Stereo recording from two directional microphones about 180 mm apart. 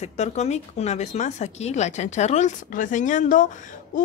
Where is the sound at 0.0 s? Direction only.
40° left (ahead or behind).